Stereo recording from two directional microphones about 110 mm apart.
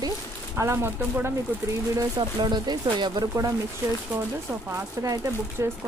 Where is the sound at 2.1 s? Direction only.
45° right (ahead or behind).